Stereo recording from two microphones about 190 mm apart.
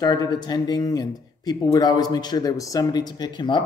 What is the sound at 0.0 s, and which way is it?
A man's voice, 20° left (ahead or behind).